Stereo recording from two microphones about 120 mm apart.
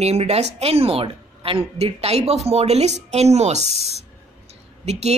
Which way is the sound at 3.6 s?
55° left (ahead or behind).